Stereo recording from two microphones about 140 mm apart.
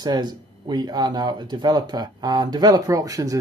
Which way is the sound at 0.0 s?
30° right (ahead or behind).